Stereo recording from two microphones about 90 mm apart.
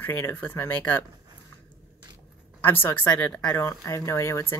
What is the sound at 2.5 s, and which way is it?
Speech, 20° left (ahead or behind).